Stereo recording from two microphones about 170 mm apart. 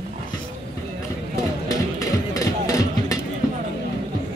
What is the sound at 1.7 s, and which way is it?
Music, 20° left (ahead or behind).